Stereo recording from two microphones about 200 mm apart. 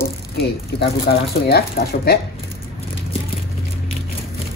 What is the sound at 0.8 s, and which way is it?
Speech, 55° left (ahead or behind).